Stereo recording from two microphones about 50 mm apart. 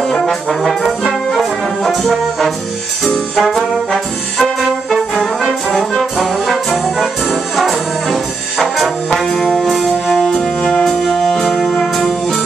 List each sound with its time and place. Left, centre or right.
0.0 s brass instrument: centre
3.0 s trombone: centre
9.5 s music: centre
10.6 s music: centre